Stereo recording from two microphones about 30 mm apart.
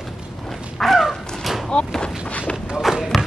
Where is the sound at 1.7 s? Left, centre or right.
Left.